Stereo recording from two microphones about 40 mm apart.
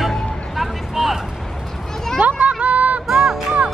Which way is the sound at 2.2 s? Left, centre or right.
Right.